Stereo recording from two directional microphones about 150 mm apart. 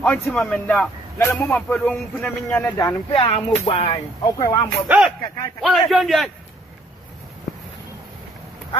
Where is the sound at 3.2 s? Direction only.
40° left (ahead or behind).